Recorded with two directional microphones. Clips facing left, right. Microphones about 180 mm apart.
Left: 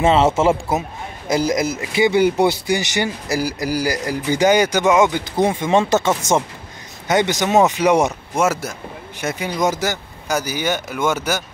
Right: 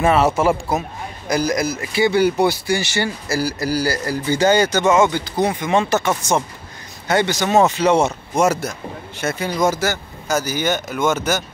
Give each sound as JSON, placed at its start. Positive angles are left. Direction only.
{"t": 0.0, "sound": "a man's voice", "side_deg": 25}
{"t": 8.4, "sound": "speech", "side_deg": 5}
{"t": 9.2, "sound": "speech", "side_deg": 15}